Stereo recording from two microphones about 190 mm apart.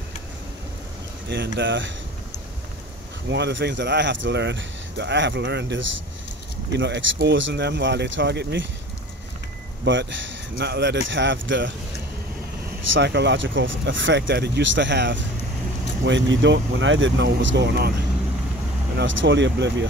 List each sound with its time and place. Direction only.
1.3 s speech: 70° right (ahead or behind)
3.3 s speech: 65° right (ahead or behind)
9.8 s speech: 75° right (ahead or behind)
12.9 s speech: 65° right (ahead or behind)
18.9 s speech: 70° right (ahead or behind)